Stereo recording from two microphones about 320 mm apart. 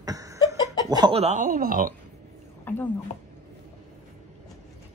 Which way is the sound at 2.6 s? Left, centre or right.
Centre.